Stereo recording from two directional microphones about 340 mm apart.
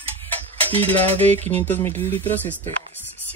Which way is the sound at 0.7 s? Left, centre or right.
Centre.